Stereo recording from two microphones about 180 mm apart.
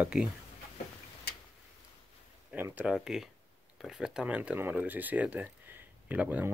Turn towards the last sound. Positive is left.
turn(degrees=-10)  # may be behind; listen again after turning